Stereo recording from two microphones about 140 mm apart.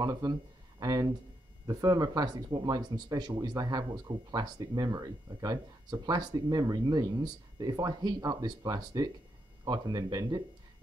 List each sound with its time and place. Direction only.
0.0 s speech: 25° right (ahead or behind)